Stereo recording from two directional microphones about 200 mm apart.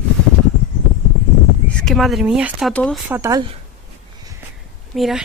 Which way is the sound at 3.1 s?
15° right (ahead or behind).